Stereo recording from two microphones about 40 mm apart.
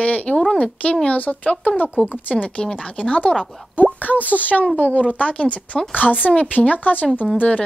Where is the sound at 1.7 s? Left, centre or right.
Left.